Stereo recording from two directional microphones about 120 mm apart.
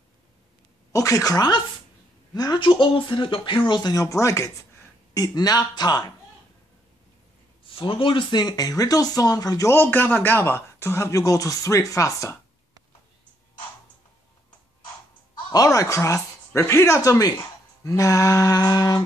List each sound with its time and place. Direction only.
0.9 s speech: 30° left (ahead or behind)
7.6 s speech: 45° left (ahead or behind)
9.8 s speech: 15° left (ahead or behind)
15.5 s speech: 30° left (ahead or behind)